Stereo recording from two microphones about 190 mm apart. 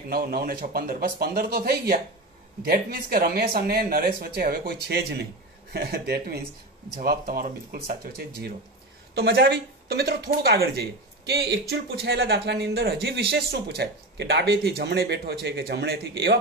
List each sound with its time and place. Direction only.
0.1 s speech: 55° right (ahead or behind)